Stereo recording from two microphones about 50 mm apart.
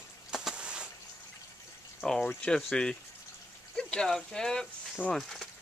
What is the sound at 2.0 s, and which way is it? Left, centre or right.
Speech, centre.